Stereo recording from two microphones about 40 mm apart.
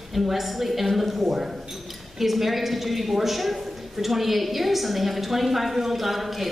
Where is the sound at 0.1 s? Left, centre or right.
Centre.